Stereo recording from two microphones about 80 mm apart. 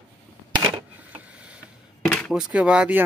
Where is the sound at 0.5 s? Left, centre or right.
Right.